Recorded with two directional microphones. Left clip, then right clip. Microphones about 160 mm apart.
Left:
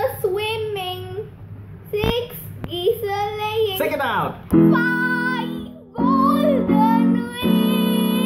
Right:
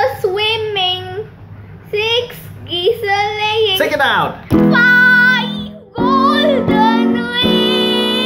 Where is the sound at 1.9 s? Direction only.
5° right (ahead or behind).